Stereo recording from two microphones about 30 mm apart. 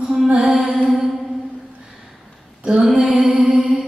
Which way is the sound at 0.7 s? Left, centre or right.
Centre.